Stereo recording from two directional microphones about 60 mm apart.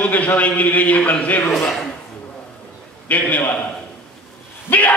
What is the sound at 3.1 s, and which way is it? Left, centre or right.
Speech, left.